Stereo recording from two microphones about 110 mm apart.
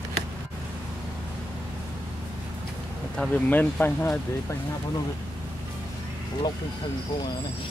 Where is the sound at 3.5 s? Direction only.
15° left (ahead or behind).